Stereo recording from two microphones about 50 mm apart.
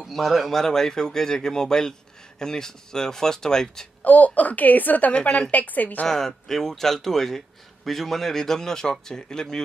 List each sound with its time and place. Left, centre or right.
0.0 s speech: centre
4.0 s a woman's voice: left
5.1 s a woman's voice: left
5.5 s a woman's voice: left
6.0 s speech: centre